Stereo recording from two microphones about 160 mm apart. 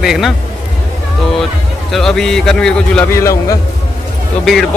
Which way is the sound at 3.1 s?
20° left (ahead or behind).